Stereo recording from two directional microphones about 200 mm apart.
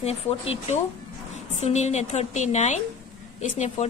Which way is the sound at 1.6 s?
35° left (ahead or behind).